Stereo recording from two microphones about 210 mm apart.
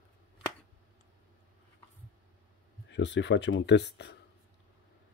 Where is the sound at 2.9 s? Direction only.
60° left (ahead or behind).